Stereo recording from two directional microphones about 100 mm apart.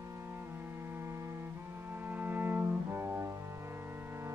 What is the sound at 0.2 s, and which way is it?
Music, 20° right (ahead or behind).